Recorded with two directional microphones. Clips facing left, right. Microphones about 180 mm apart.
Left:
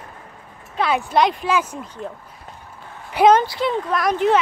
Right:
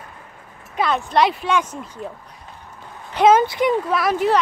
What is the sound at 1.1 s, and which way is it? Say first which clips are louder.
Speech: right 1 dB; centre (ahead or behind).